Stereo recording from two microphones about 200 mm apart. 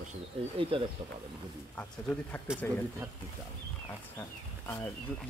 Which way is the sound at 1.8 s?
10° left (ahead or behind).